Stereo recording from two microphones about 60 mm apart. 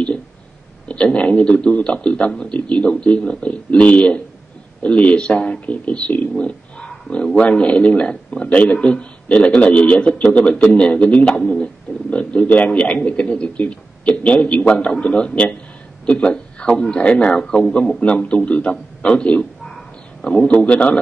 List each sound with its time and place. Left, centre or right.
0.8 s a man's voice: left
18.0 s speech: left